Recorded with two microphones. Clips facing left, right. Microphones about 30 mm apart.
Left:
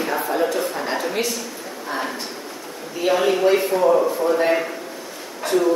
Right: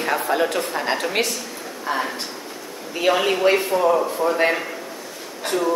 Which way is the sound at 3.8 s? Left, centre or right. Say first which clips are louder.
Left 4 dB; centre.